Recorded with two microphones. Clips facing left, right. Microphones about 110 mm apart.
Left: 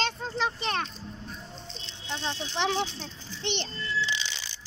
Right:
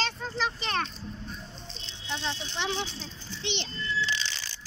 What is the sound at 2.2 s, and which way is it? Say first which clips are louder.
A child's voice: left 5 dB; 50° left (ahead or behind).